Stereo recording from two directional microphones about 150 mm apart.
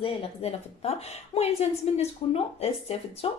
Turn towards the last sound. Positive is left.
turn(degrees=40)  # may be behind; listen again after turning